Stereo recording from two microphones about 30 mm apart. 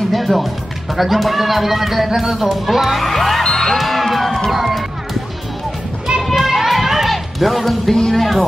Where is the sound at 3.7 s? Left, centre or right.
Centre.